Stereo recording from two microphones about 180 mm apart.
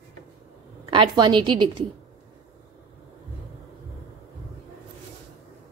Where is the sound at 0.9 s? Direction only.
25° right (ahead or behind).